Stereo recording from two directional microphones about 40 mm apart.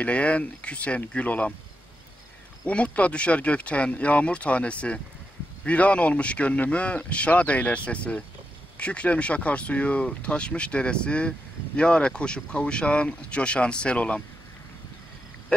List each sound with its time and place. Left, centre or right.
0.0 s a man's voice: left
2.6 s a man's voice: left